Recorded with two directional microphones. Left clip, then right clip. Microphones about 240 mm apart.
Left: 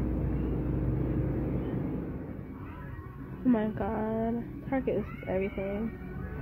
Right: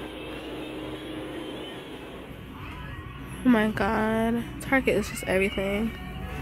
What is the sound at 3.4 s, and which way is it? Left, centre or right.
A woman's voice, right.